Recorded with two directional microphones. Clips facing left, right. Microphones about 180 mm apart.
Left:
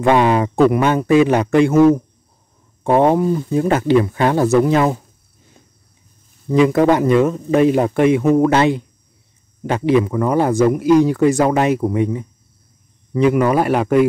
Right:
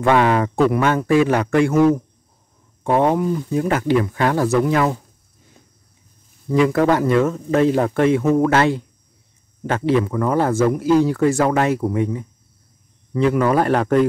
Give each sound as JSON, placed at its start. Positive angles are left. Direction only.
{"t": 0.0, "sound": "speech", "side_deg": 20}
{"t": 6.5, "sound": "speech", "side_deg": 20}